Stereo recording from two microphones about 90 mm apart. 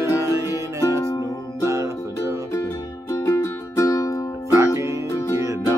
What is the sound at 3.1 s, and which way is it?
Music, 30° left (ahead or behind).